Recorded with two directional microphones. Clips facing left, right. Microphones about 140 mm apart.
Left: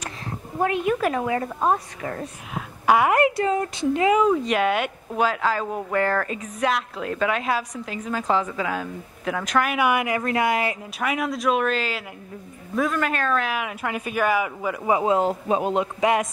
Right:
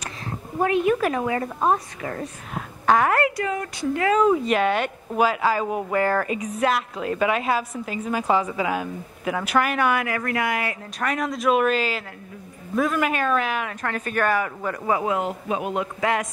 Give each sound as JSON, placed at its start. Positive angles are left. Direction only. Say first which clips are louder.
{"t": 2.5, "sound": "a woman's voice", "louder": "even", "side_deg": 10}
{"t": 4.2, "sound": "speech", "louder": "right 1 dB", "side_deg": 0}
{"t": 9.8, "sound": "a woman's voice", "louder": "left 1 dB", "side_deg": 15}
{"t": 11.0, "sound": "speech", "louder": "even", "side_deg": 5}
{"t": 13.5, "sound": "speech", "louder": "even", "side_deg": 10}
{"t": 14.9, "sound": "a woman's voice", "louder": "left 4 dB", "side_deg": 25}